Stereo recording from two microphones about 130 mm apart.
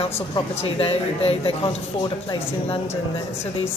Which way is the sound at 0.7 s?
50° left (ahead or behind).